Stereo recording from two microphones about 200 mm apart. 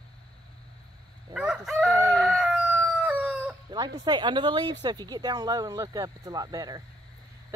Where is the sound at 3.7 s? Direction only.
20° right (ahead or behind).